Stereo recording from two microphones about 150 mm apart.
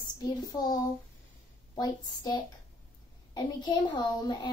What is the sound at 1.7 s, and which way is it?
A child's voice, 25° left (ahead or behind).